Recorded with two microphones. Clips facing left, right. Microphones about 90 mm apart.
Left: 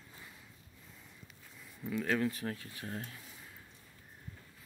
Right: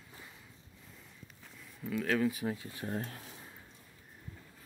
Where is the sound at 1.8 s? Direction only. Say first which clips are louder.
Right 2 dB; centre (ahead or behind).